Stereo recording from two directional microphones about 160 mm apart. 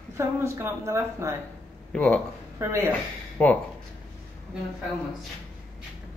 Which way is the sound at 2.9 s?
10° left (ahead or behind).